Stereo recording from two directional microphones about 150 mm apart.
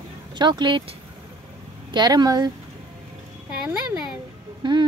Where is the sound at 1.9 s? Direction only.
30° right (ahead or behind).